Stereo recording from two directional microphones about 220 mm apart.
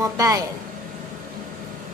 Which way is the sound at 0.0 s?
15° right (ahead or behind).